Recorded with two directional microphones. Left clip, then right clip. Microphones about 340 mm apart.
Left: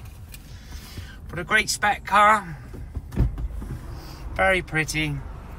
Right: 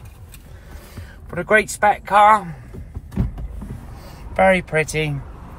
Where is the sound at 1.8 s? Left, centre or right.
Centre.